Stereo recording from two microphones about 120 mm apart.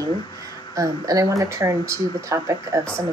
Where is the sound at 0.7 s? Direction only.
30° right (ahead or behind).